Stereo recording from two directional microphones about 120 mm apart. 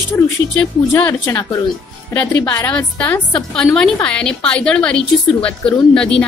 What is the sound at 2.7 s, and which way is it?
A woman's voice, 10° left (ahead or behind).